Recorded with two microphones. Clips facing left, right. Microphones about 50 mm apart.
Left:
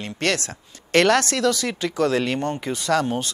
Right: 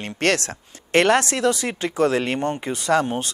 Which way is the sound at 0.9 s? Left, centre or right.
Right.